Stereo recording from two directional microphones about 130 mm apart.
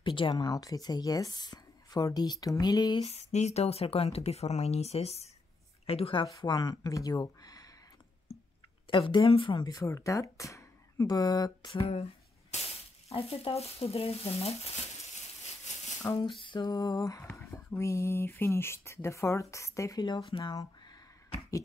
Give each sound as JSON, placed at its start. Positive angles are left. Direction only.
{"t": 0.0, "sound": "speech", "side_deg": 40}
{"t": 3.1, "sound": "speech", "side_deg": 60}
{"t": 6.3, "sound": "speech", "side_deg": 35}
{"t": 8.8, "sound": "speech", "side_deg": 40}
{"t": 16.0, "sound": "a sound", "side_deg": 25}
{"t": 16.3, "sound": "speech", "side_deg": 35}
{"t": 20.5, "sound": "a sound", "side_deg": 30}